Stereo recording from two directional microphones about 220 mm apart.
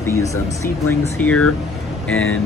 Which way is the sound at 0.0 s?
15° left (ahead or behind).